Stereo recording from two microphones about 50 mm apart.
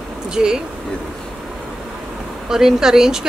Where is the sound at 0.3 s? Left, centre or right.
Centre.